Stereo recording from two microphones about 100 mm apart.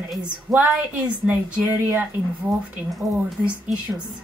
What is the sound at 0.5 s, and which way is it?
A woman's voice, 15° right (ahead or behind).